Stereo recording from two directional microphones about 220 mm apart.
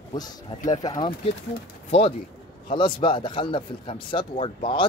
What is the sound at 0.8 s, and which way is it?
Speech, 20° left (ahead or behind).